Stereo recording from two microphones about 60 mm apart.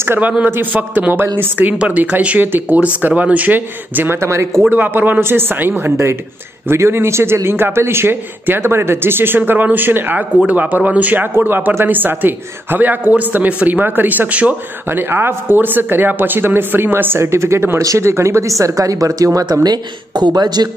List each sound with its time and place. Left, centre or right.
0.2 s speech: right
1.2 s speech: right
1.6 s speech: right
4.2 s speech: right
4.6 s a man's voice: right
11.3 s a man's voice: right